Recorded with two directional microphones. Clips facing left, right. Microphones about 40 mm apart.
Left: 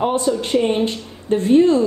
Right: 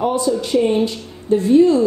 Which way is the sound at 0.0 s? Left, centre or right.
Left.